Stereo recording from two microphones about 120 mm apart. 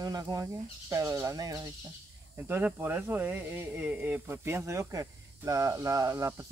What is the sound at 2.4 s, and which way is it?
Speech, 15° right (ahead or behind).